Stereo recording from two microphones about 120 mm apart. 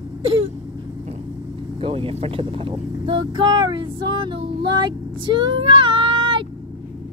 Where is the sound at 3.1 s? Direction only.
40° right (ahead or behind).